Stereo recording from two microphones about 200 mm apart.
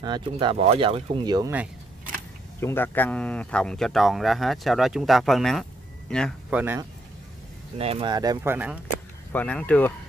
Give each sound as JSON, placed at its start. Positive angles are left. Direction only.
{"t": 0.0, "sound": "speech", "side_deg": -25}
{"t": 2.6, "sound": "speech", "side_deg": 10}
{"t": 6.5, "sound": "speech", "side_deg": -10}
{"t": 7.8, "sound": "speech", "side_deg": -25}
{"t": 8.8, "sound": "speech", "side_deg": 10}